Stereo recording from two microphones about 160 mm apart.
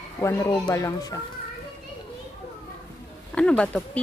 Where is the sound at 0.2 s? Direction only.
15° left (ahead or behind).